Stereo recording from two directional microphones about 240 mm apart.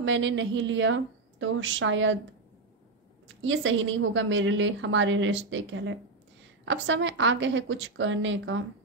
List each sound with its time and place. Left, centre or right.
0.0 s a woman's voice: right
3.3 s a woman's voice: right